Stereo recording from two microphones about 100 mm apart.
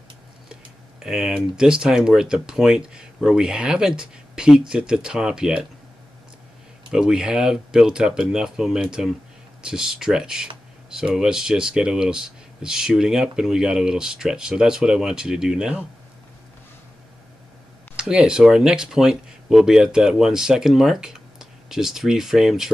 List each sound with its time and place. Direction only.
0.5 s speech: 5° right (ahead or behind)
6.9 s speech: 5° right (ahead or behind)
17.9 s speech: 10° right (ahead or behind)